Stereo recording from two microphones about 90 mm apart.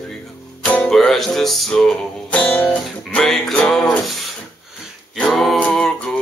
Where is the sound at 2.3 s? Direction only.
15° left (ahead or behind).